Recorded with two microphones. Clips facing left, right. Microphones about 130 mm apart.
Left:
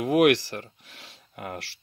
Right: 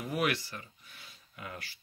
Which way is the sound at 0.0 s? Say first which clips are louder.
Left 12 dB; 90° left.